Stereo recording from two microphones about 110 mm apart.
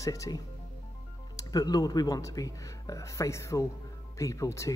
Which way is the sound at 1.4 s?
35° left (ahead or behind).